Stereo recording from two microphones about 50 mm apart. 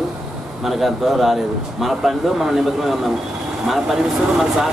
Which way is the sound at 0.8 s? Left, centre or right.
Centre.